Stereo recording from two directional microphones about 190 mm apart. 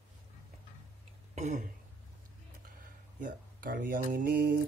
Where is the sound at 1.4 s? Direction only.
40° right (ahead or behind).